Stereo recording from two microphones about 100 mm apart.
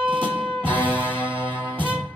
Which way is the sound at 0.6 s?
55° right (ahead or behind).